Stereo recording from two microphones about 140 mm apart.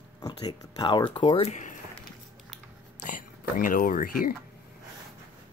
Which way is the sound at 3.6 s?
80° left.